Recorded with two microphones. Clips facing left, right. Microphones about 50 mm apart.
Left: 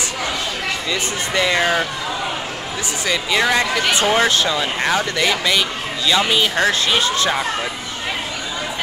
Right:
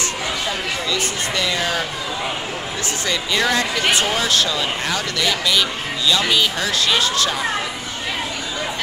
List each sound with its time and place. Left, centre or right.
0.8 s speech: left
3.1 s speech: centre
3.9 s speech: left
6.5 s speech: left